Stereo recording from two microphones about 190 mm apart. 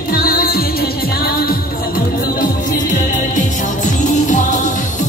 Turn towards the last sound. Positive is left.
turn(degrees=40)  # may be behind; listen again after turning